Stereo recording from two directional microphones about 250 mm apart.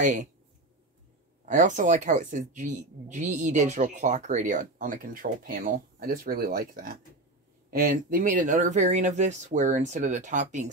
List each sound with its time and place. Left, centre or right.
0.0 s speech: right
1.4 s speech: right